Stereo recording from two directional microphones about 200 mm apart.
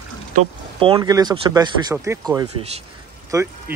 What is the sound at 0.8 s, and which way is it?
Speech, 25° right (ahead or behind).